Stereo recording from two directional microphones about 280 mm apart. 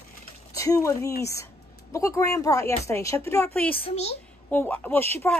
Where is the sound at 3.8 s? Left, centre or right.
Left.